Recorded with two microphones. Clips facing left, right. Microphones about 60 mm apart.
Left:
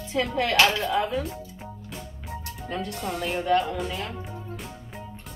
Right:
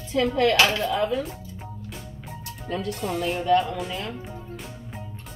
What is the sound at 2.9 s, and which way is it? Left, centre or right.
Speech, centre.